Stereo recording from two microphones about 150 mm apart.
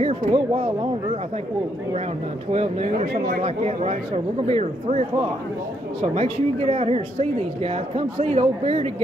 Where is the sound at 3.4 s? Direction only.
45° right (ahead or behind).